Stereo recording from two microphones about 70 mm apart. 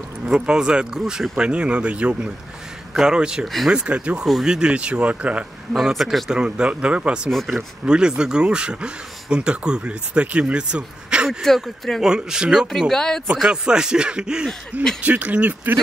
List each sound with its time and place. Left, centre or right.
0.3 s speech: centre
3.4 s speech: centre
3.7 s speech: centre
5.8 s speech: centre
11.2 s speech: centre
12.0 s speech: centre
12.9 s speech: centre
13.3 s speech: centre